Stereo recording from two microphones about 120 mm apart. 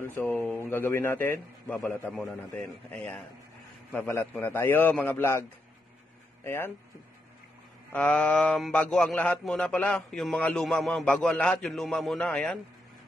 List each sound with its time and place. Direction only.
0.0 s speech: 20° left (ahead or behind)
6.4 s speech: 20° left (ahead or behind)
7.9 s a man's voice: 10° left (ahead or behind)